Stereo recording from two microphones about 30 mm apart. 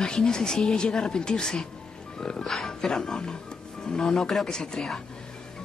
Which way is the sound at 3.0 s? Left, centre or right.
Left.